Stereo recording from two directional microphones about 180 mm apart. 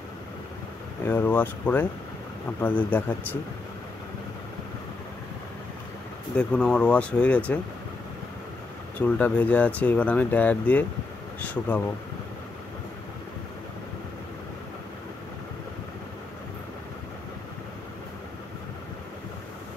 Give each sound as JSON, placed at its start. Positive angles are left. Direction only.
{"t": 1.0, "sound": "speech", "side_deg": 10}
{"t": 6.3, "sound": "speech", "side_deg": 5}
{"t": 8.9, "sound": "speech", "side_deg": 10}